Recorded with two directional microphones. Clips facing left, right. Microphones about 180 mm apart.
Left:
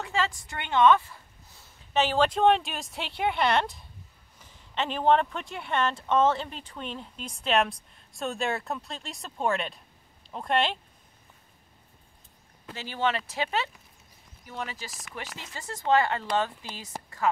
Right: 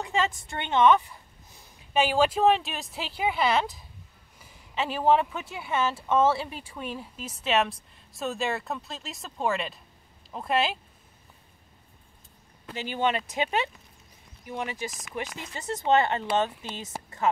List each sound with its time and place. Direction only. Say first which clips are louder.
0.0 s a woman's voice: right 2 dB; 20° right (ahead or behind)
12.7 s speech: right 2 dB; 15° right (ahead or behind)